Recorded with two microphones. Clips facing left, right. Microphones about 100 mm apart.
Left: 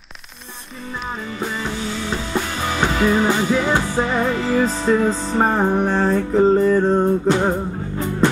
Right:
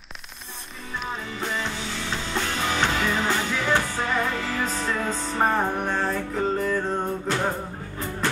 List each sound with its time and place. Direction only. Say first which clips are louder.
1.4 s music: left 5 dB; 5° left (ahead or behind); by 7.0 s 35° left (ahead or behind)
7.2 s music: left 8 dB; 20° left (ahead or behind)